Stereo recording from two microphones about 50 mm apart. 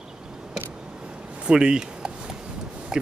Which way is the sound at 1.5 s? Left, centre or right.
Centre.